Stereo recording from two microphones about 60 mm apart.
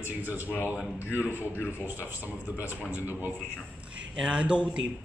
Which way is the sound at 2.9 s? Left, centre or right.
Right.